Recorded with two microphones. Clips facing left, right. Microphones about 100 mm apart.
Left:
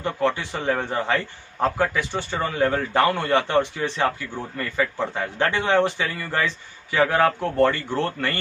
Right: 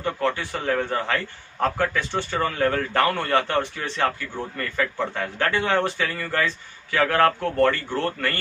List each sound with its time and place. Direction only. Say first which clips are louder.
0.0 s a man's voice: left 1 dB; 20° left (ahead or behind)